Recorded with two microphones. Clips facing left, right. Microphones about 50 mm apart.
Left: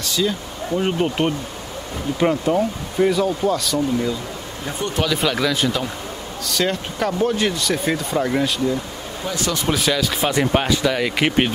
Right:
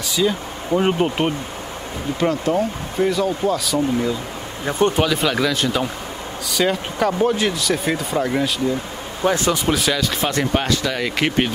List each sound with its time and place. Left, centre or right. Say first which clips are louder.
0.0 s speech: right 2 dB; centre
2.1 s speech: left 1 dB; centre
4.6 s speech: right 8 dB; right
4.9 s speech: right 2 dB; centre
9.2 s speech: right 7 dB; right
9.7 s speech: even; centre